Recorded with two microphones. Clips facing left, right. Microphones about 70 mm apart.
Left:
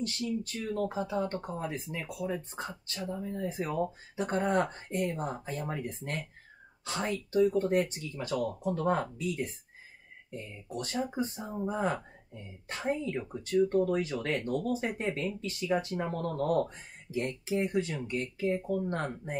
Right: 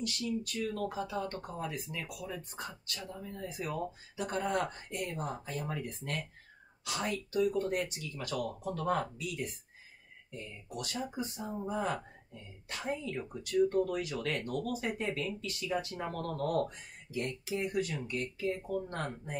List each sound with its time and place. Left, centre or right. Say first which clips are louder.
0.0 s speech: left 2 dB; left